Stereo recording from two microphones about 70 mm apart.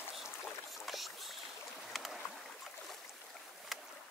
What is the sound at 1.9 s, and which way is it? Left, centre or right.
Boat, centre.